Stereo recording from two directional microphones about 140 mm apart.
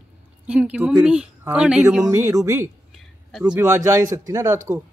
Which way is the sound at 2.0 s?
20° right (ahead or behind).